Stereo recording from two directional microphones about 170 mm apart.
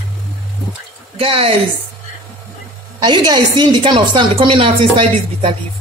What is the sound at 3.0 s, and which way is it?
A woman's voice, 25° right (ahead or behind).